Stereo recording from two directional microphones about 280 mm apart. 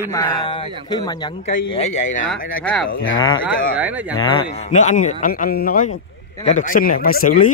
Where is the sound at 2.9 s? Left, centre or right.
Left.